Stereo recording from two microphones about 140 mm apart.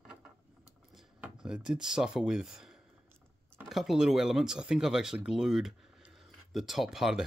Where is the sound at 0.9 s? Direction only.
5° right (ahead or behind).